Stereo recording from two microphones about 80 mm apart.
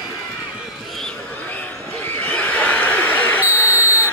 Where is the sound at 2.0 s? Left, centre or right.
Left.